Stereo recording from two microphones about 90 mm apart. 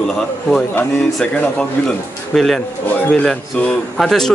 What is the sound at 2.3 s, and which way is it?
A man's voice, 5° left (ahead or behind).